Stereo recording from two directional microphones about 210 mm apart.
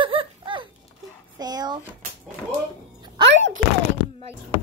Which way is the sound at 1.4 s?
20° right (ahead or behind).